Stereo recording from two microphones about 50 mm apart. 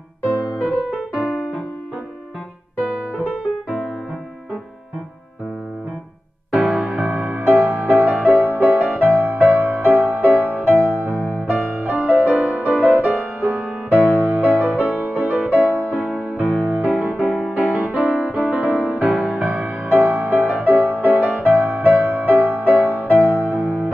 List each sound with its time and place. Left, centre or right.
0.3 s music: right
6.5 s music: right
11.1 s music: left
11.4 s music: right
13.8 s music: left
14.3 s music: right
16.4 s music: left
16.7 s music: right